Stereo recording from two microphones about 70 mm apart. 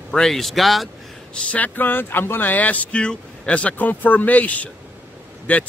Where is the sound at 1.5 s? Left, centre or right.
Left.